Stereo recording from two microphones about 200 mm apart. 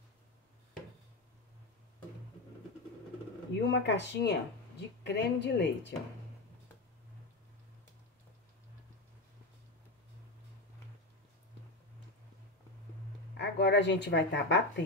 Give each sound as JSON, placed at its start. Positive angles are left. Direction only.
{"t": 3.5, "sound": "speech", "side_deg": 60}
{"t": 13.4, "sound": "speech", "side_deg": 60}